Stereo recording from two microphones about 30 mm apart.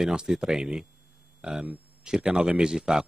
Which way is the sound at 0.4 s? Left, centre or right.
Right.